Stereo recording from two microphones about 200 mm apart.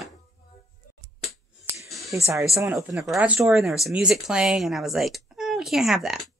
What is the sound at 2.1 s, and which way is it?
Speech, 15° right (ahead or behind).